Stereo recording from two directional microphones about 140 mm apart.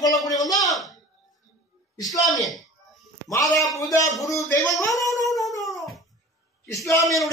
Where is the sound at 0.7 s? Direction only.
Centre (ahead or behind).